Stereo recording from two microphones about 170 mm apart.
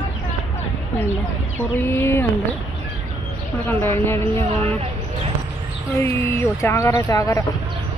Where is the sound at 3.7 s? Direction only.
15° left (ahead or behind).